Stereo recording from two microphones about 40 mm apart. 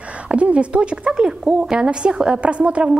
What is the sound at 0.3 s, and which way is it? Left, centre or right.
A woman's voice, right.